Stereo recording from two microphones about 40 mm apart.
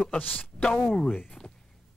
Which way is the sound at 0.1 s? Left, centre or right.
Left.